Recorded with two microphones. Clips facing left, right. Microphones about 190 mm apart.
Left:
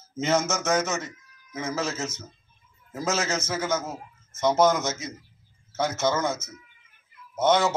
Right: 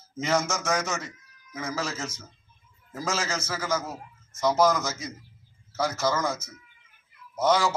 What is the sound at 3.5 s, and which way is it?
A man's voice, 25° left (ahead or behind).